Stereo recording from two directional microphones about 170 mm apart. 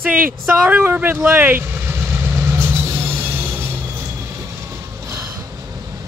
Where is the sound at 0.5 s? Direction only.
10° right (ahead or behind).